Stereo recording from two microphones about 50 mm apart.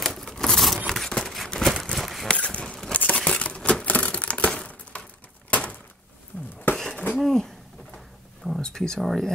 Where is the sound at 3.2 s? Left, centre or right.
Left.